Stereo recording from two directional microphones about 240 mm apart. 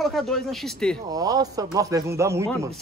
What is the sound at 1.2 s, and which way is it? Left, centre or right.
Speech, centre.